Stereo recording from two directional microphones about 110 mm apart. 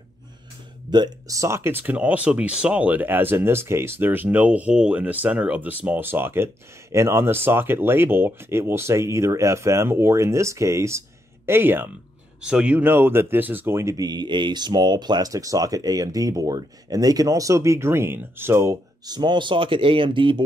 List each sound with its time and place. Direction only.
0.8 s speech: 40° right (ahead or behind); by 11.9 s 20° right (ahead or behind)
12.4 s speech: 5° right (ahead or behind); by 20.4 s 50° right (ahead or behind)